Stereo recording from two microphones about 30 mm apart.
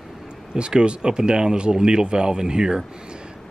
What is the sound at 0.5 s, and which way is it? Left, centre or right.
Speech, right.